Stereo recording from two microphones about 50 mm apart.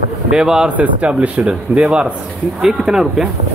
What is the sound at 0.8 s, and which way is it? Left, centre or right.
Speech, right.